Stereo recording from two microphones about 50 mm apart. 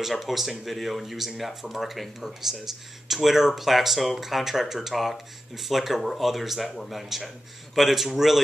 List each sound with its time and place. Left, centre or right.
0.0 s speech: centre